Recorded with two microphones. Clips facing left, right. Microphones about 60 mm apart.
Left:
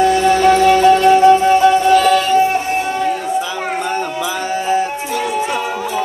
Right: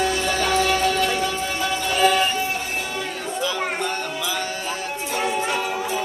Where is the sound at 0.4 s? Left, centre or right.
Left.